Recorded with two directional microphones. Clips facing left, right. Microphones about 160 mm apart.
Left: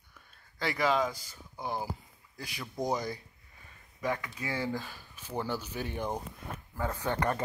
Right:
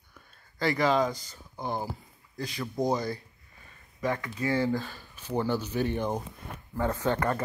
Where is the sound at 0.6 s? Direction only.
5° left (ahead or behind).